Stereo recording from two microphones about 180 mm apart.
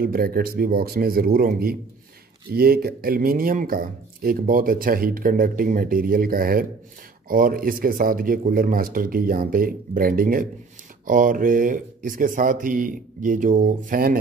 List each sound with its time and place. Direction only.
0.0 s speech: 55° right (ahead or behind)